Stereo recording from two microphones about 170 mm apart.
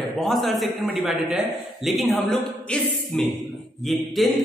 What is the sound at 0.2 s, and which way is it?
Speech, centre (ahead or behind).